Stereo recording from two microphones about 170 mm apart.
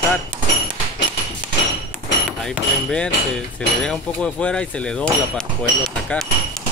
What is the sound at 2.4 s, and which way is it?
Speech, 5° left (ahead or behind).